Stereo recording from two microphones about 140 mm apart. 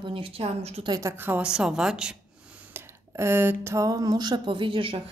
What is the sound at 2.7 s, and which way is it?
Speech, 15° right (ahead or behind).